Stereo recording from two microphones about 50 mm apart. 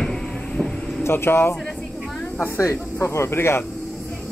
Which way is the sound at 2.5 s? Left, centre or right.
Left.